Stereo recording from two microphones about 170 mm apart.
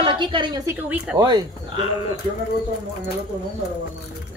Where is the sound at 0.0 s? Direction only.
30° right (ahead or behind).